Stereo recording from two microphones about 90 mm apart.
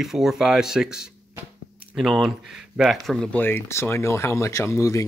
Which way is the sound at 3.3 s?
20° left (ahead or behind).